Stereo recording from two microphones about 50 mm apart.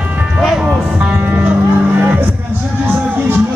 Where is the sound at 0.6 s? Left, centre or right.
Right.